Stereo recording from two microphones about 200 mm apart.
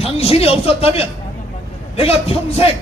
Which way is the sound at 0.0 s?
30° left (ahead or behind).